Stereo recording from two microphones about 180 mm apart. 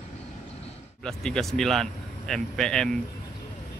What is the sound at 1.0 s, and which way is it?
Speech, 5° left (ahead or behind).